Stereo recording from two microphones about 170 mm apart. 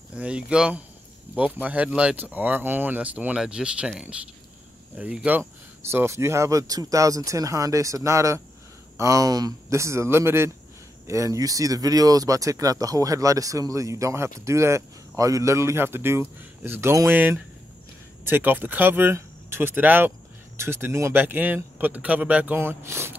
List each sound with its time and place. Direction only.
0.1 s speech: 5° right (ahead or behind)